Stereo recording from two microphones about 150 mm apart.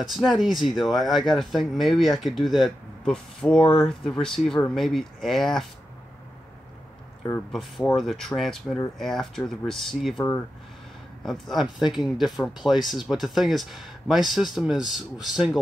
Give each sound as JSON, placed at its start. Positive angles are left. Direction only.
{"t": 0.0, "sound": "speech", "side_deg": 0}
{"t": 7.5, "sound": "speech", "side_deg": 0}
{"t": 11.2, "sound": "speech", "side_deg": 0}